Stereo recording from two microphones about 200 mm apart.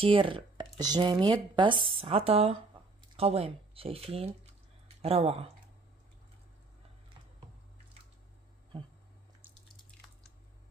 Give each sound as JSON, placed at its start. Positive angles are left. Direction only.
{"t": 0.0, "sound": "speech", "side_deg": -25}
{"t": 9.8, "sound": "drip", "side_deg": 0}